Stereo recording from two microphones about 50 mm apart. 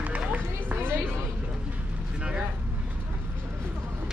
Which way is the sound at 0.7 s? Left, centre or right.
Right.